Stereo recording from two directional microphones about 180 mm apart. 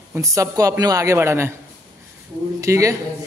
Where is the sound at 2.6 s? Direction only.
15° right (ahead or behind).